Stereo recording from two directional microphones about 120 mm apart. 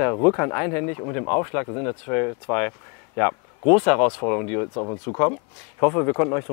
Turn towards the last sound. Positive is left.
turn(degrees=20)  # may be behind; listen again after turning